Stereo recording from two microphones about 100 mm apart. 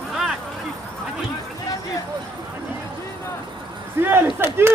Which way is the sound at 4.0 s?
20° right (ahead or behind).